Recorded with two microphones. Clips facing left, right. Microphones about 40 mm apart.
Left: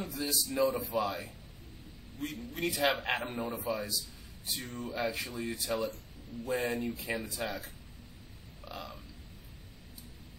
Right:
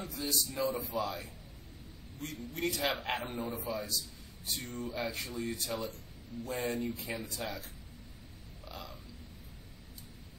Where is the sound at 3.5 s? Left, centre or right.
Centre.